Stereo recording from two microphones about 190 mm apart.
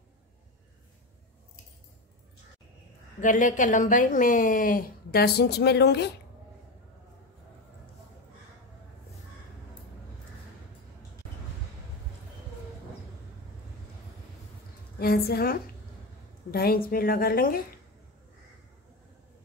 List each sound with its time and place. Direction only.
3.2 s a woman's voice: 45° left (ahead or behind); by 6.0 s 60° left (ahead or behind)
15.0 s a woman's voice: 55° left (ahead or behind)